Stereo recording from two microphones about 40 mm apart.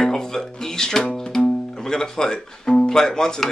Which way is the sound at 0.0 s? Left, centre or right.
Centre.